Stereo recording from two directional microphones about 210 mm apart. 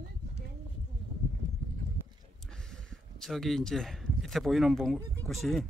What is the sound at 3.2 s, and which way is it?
Speech, centre (ahead or behind).